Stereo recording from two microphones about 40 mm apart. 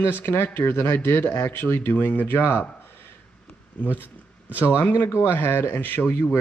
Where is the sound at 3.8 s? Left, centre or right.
Left.